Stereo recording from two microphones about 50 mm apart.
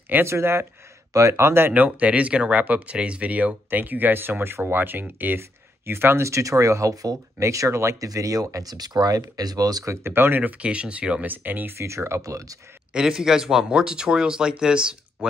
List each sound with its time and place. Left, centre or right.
0.2 s speech: right
1.1 s speech: right
1.4 s speech: right
1.7 s speech: right
6.2 s speech: right
10.0 s speech: right
10.4 s speech: right
11.3 s speech: right
11.8 s speech: right
12.9 s speech: centre